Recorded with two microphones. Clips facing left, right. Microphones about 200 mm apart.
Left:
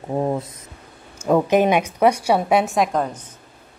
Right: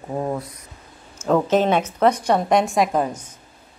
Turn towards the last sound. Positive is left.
turn(degrees=-5)  # may be behind; listen again after turning